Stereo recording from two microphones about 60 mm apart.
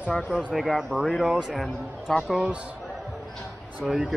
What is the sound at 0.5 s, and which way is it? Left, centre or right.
Speech, centre.